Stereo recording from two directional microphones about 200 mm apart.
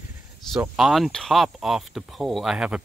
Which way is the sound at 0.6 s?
5° right (ahead or behind).